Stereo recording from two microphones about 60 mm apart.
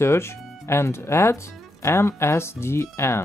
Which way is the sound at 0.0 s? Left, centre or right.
Left.